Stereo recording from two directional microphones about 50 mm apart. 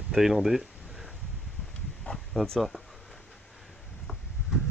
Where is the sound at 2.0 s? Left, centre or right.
Centre.